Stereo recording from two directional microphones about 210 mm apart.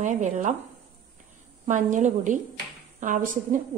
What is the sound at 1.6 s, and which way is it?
A woman's voice, 35° right (ahead or behind).